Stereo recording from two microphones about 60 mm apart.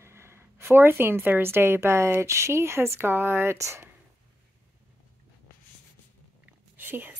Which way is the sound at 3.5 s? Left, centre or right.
Right.